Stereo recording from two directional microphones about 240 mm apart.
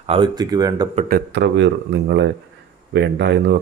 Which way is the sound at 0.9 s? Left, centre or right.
Right.